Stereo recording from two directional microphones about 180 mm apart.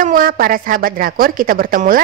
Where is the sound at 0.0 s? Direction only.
50° right (ahead or behind).